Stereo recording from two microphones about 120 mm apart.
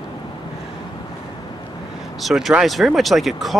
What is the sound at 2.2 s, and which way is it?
Speech, centre (ahead or behind).